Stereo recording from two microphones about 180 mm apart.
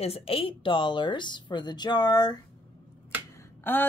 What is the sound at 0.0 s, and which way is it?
A woman's voice, 35° left (ahead or behind).